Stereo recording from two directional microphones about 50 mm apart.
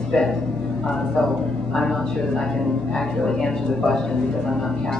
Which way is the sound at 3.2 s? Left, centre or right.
Centre.